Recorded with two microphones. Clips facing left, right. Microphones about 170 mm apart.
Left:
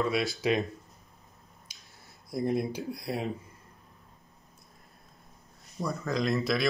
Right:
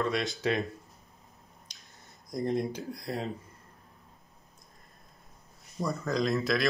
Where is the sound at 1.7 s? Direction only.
10° left (ahead or behind).